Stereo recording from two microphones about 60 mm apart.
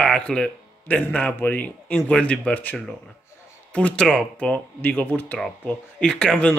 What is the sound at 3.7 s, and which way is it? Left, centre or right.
Speech, centre.